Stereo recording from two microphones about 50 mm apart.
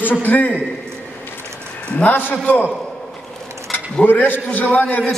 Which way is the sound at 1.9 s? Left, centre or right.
Left.